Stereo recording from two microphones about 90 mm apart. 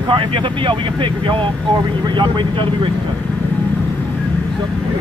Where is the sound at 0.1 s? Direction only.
70° right (ahead or behind).